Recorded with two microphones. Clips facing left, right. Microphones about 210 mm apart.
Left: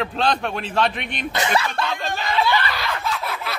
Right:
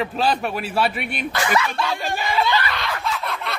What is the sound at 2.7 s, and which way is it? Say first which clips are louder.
Snicker: even; 5° left (ahead or behind).